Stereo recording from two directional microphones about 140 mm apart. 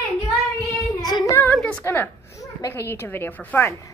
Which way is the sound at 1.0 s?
30° left (ahead or behind).